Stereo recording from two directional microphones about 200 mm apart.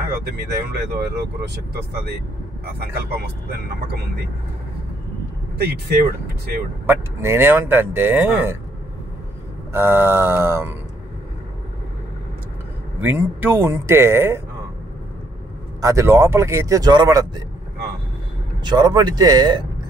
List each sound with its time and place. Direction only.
0.7 s speech: 55° right (ahead or behind)
5.6 s speech: 55° right (ahead or behind)
6.9 s speech: 10° right (ahead or behind)
9.7 s speech: 10° right (ahead or behind)
13.0 s speech: 10° right (ahead or behind)
15.8 s speech: 15° right (ahead or behind)
18.6 s speech: 20° right (ahead or behind)